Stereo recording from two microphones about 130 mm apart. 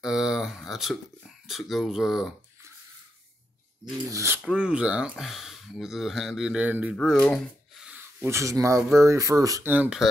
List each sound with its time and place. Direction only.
0.0 s a sound: 5° right (ahead or behind)
1.5 s speech: centre (ahead or behind)
4.1 s speech: 20° right (ahead or behind)
4.4 s speech: 10° right (ahead or behind)
7.0 s speech: 5° left (ahead or behind)
7.8 s a sound: 15° right (ahead or behind)
8.9 s speech: 25° right (ahead or behind)
9.7 s speech: 10° right (ahead or behind)